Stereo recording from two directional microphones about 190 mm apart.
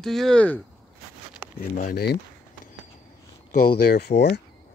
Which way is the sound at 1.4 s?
10° right (ahead or behind).